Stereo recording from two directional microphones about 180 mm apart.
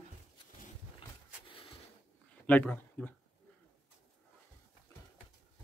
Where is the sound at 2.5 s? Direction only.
10° left (ahead or behind).